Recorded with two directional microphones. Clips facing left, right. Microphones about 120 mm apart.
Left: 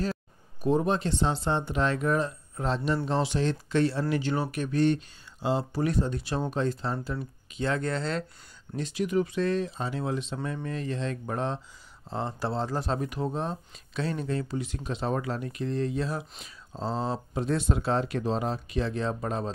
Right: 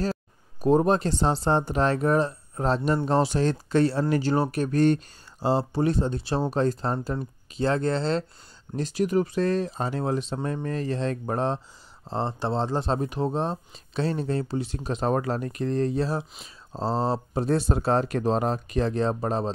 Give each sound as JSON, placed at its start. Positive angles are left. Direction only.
{"t": 0.6, "sound": "speech", "side_deg": -40}